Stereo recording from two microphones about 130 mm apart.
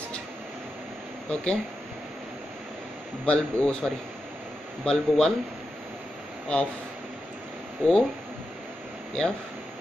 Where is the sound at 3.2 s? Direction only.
5° left (ahead or behind).